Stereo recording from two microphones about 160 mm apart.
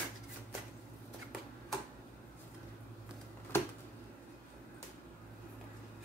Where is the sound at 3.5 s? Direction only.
15° left (ahead or behind).